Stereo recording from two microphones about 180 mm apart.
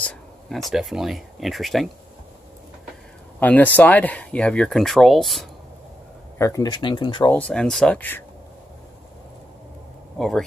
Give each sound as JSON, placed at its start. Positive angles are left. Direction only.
{"t": 0.0, "sound": "speech", "side_deg": 0}
{"t": 3.3, "sound": "speech", "side_deg": 10}
{"t": 6.3, "sound": "speech", "side_deg": 15}
{"t": 7.2, "sound": "speech", "side_deg": 5}
{"t": 10.1, "sound": "speech", "side_deg": 0}